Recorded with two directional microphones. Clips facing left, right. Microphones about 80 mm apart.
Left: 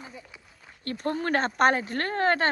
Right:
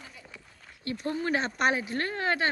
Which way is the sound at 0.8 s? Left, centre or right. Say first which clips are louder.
Left 2 dB; left.